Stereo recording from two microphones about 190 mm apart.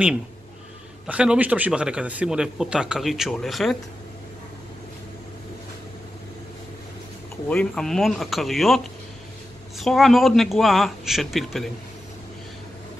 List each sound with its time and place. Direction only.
1.0 s a man's voice: 5° right (ahead or behind)
7.4 s a man's voice: 5° left (ahead or behind)